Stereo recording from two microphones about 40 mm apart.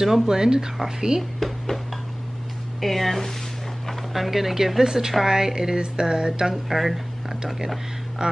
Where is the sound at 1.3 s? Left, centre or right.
Centre.